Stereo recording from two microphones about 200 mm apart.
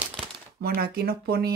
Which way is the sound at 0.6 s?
50° right (ahead or behind).